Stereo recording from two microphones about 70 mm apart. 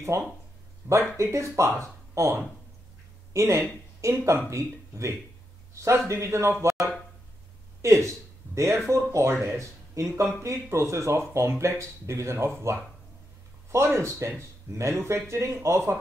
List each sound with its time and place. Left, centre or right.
0.1 s speech: right
7.8 s speech: right